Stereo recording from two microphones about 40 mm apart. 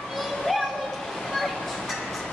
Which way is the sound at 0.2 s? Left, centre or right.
Centre.